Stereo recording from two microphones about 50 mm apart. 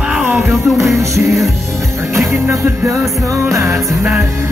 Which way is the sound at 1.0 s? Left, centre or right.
Right.